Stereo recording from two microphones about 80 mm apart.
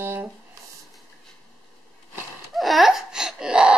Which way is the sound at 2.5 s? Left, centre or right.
Centre.